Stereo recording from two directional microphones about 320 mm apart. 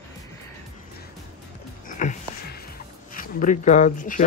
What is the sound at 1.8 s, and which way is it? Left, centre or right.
Music, left.